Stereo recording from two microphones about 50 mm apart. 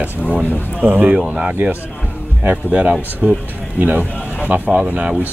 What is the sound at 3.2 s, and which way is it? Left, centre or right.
Speech, right.